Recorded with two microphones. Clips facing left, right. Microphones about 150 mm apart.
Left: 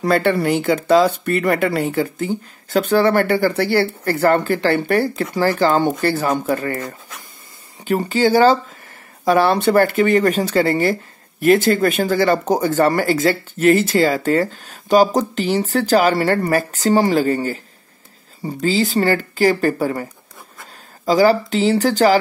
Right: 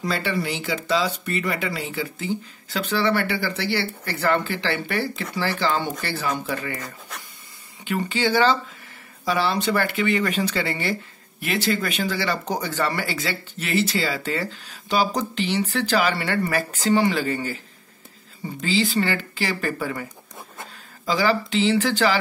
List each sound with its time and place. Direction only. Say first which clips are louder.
0.0 s speech: left 9 dB; 55° left (ahead or behind)
9.2 s speech: left 8 dB; 55° left (ahead or behind)